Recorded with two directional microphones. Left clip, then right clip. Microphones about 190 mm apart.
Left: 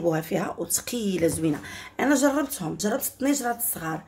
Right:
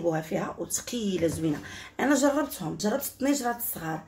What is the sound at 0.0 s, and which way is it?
Speech, 30° left (ahead or behind).